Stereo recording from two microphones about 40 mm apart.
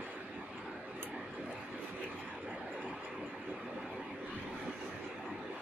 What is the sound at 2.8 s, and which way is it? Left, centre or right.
Train, right.